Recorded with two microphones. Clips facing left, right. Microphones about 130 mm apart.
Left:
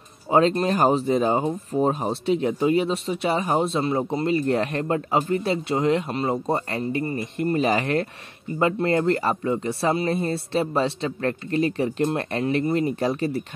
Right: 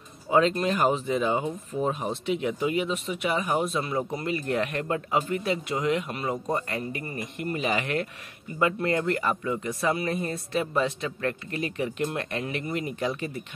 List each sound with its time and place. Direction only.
0.3 s speech: 35° left (ahead or behind)